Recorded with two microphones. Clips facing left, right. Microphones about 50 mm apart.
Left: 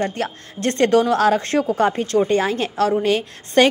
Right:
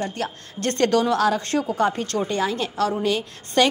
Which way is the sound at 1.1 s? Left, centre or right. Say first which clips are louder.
Left 4 dB; left.